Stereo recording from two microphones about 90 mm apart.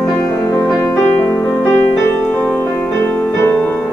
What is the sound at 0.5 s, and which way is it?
Music, 35° left (ahead or behind).